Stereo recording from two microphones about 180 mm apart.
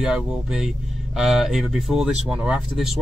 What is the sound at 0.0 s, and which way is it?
Speech, 5° right (ahead or behind).